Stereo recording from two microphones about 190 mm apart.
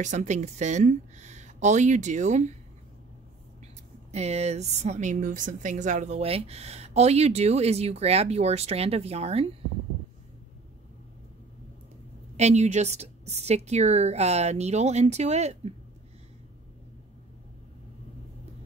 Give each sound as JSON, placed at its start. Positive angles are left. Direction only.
{"t": 0.0, "sound": "a woman's voice", "side_deg": -40}
{"t": 4.1, "sound": "a woman's voice", "side_deg": -35}
{"t": 12.4, "sound": "a woman's voice", "side_deg": -35}